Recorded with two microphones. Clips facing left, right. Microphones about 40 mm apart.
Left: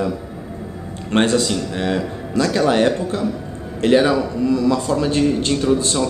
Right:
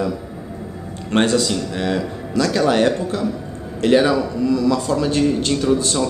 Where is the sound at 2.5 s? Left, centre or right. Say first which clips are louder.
Even; centre.